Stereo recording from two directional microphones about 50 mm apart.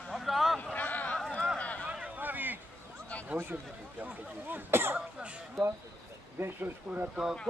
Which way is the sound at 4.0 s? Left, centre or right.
Right.